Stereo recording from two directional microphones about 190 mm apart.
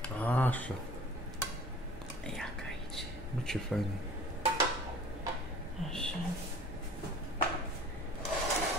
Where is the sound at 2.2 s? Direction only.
Centre (ahead or behind).